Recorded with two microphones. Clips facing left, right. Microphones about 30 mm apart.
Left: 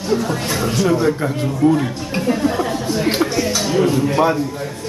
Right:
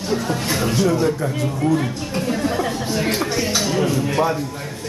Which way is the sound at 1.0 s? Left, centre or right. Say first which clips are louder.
Left 2 dB; left.